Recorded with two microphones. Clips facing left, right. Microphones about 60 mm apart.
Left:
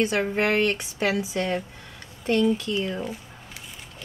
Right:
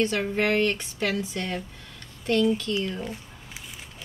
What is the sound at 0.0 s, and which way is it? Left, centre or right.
Speech, centre.